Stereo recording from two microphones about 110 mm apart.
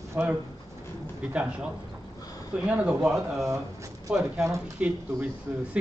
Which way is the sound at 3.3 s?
25° right (ahead or behind).